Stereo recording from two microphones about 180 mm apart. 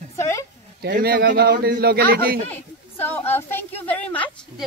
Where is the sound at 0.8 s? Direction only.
60° right (ahead or behind).